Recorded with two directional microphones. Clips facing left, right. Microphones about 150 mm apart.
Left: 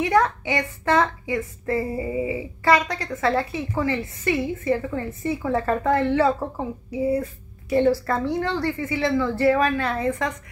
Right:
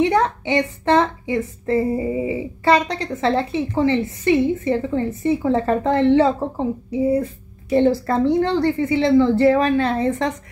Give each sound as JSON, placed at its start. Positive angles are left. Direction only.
{"t": 0.0, "sound": "a woman's voice", "side_deg": -25}